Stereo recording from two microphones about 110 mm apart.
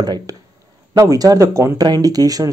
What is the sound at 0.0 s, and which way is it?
Speech, 35° right (ahead or behind).